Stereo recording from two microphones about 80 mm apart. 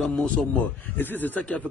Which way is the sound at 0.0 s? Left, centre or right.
Centre.